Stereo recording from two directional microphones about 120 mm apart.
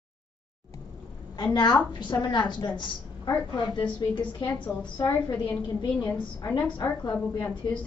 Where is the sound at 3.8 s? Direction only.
40° left (ahead or behind).